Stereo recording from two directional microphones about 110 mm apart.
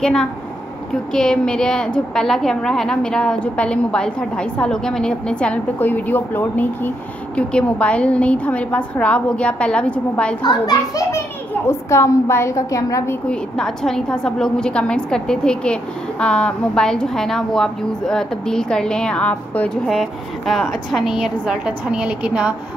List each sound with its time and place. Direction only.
0.0 s a woman's voice: 5° left (ahead or behind)
10.4 s a child's voice: 35° left (ahead or behind)
13.3 s a woman's voice: 5° left (ahead or behind)
19.9 s a woman's voice: centre (ahead or behind)